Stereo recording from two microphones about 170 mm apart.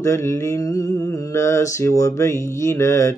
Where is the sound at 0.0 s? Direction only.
15° left (ahead or behind).